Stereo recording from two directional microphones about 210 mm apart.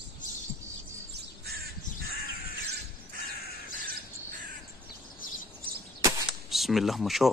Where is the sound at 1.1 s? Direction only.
50° right (ahead or behind).